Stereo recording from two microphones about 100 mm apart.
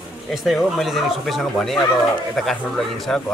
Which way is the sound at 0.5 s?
Centre (ahead or behind).